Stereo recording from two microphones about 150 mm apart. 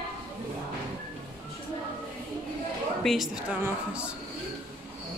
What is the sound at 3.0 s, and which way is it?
Speech, centre (ahead or behind).